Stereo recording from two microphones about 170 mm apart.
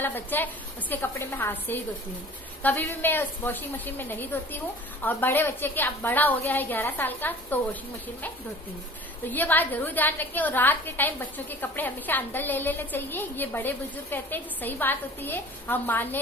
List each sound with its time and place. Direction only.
0.0 s a woman's voice: 10° left (ahead or behind)
9.2 s a woman's voice: 10° left (ahead or behind)